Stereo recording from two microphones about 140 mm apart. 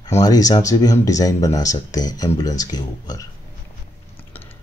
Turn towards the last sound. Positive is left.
turn(degrees=25)  # may be behind; listen again after turning